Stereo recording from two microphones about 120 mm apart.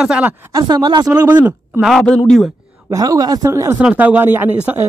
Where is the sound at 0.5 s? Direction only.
35° right (ahead or behind).